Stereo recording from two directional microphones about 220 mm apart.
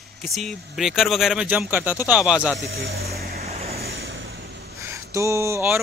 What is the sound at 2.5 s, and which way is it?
Speech, 50° right (ahead or behind).